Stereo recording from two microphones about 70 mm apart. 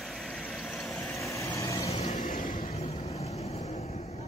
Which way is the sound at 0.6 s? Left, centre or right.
Centre.